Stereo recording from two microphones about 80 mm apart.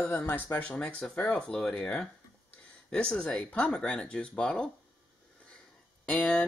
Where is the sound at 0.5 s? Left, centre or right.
Centre.